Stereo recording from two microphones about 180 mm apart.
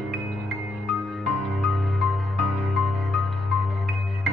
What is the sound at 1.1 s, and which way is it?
Music, centre (ahead or behind).